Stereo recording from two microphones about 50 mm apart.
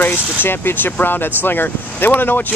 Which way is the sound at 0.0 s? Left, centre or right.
Left.